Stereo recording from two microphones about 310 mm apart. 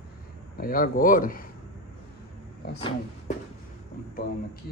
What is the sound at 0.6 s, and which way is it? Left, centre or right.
Speech, left.